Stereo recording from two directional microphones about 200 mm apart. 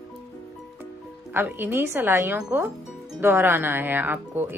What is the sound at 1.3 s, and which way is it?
Speech, 10° right (ahead or behind).